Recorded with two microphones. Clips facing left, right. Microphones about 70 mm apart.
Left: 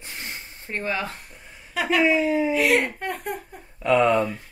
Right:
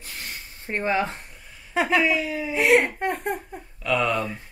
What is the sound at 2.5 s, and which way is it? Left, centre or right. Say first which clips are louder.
Speech: right 1 dB; right.